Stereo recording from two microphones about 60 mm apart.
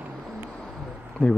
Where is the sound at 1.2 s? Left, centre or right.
Centre.